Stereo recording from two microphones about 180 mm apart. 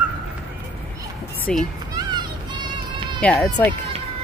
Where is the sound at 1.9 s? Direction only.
25° right (ahead or behind).